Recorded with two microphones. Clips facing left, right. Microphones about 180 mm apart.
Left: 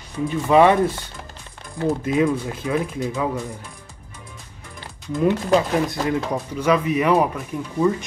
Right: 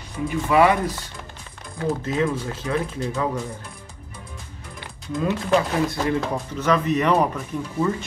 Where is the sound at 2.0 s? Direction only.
15° left (ahead or behind).